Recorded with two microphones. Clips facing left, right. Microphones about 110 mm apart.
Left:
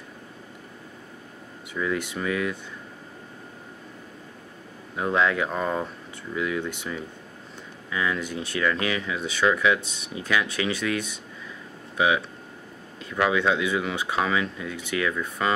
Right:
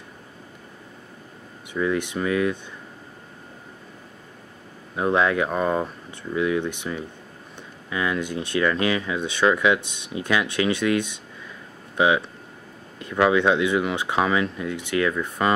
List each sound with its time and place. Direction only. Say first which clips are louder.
1.7 s speech: right 4 dB; 20° right (ahead or behind)
4.9 s speech: right 3 dB; 20° right (ahead or behind)